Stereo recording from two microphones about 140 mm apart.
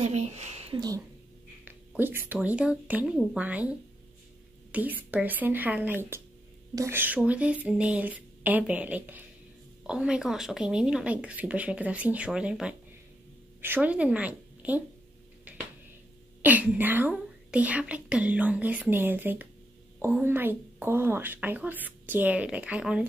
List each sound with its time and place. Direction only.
0.0 s speech: 50° right (ahead or behind)
0.7 s speech: 25° right (ahead or behind)
1.6 s a sound: 15° right (ahead or behind)
2.3 s a woman's voice: 10° right (ahead or behind)
4.7 s a woman's voice: 10° right (ahead or behind)
15.5 s a sound: 10° right (ahead or behind)
16.4 s a woman's voice: 10° right (ahead or behind)